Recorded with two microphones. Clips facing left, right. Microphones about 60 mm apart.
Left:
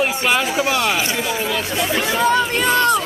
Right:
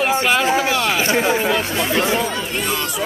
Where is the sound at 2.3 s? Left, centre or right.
Left.